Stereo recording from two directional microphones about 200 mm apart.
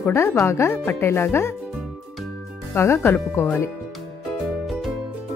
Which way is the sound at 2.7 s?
10° left (ahead or behind).